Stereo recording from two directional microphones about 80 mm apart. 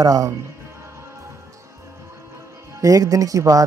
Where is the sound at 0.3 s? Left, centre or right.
Right.